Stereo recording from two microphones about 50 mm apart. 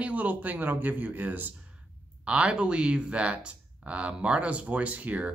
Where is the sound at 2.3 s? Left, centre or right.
Right.